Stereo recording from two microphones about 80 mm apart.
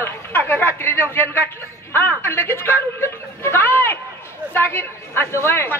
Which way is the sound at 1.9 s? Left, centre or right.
Left.